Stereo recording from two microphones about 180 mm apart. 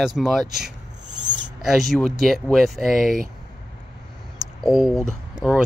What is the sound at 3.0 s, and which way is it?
Speech, 50° right (ahead or behind).